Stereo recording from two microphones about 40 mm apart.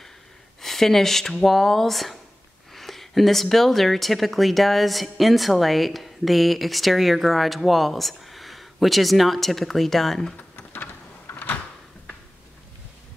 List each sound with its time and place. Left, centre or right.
0.6 s speech: centre
10.5 s a sound: left
11.3 s door: left